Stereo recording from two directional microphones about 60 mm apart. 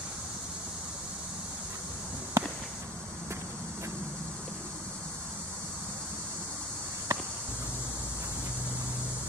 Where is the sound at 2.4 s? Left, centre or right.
Right.